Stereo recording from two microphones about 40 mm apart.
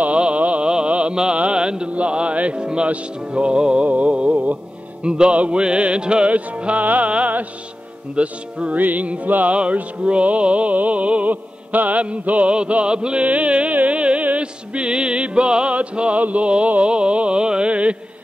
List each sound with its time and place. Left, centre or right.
0.0 s a sound: right
0.7 s music: right
3.8 s music: right
5.0 s music: right
8.7 s music: right